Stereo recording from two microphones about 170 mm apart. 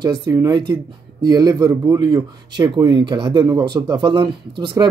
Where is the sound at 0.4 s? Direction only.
25° right (ahead or behind).